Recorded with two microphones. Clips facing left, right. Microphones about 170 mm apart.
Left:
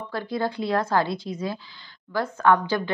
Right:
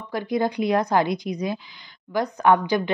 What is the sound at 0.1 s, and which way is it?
A woman's voice, 15° right (ahead or behind).